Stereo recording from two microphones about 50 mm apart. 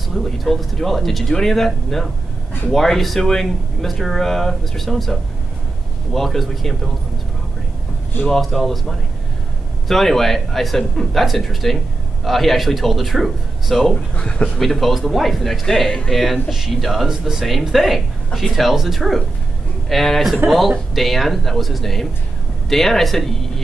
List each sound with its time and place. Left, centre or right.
0.1 s speech: centre
2.7 s speech: centre
8.3 s speech: centre
14.1 s speech: left
14.6 s speech: centre